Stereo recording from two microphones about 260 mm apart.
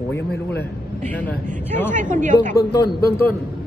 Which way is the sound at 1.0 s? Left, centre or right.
Centre.